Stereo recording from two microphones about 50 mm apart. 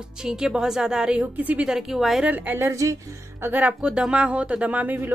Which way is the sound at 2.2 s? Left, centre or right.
Right.